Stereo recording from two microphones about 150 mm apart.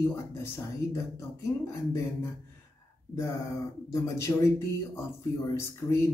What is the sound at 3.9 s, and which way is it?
Speech, 20° left (ahead or behind).